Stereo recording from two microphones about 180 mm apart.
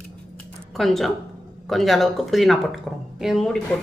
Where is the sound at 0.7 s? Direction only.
Centre (ahead or behind).